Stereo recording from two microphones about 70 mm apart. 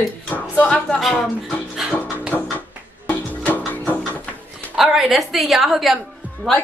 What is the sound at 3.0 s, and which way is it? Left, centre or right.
Music, left.